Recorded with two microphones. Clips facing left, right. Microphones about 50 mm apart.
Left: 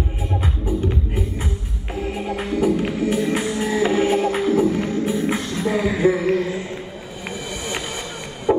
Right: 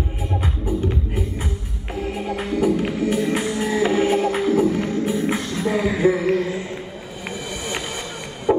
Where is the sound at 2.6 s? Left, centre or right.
Centre.